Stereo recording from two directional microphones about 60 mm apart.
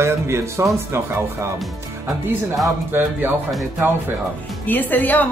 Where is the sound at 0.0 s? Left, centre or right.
Right.